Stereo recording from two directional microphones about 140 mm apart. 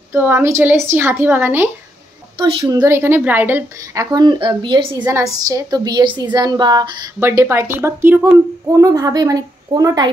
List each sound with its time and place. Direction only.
0.1 s a woman's voice: 15° right (ahead or behind)
2.3 s a woman's voice: 30° right (ahead or behind)
5.0 s a woman's voice: 25° right (ahead or behind)
7.2 s a woman's voice: 20° right (ahead or behind)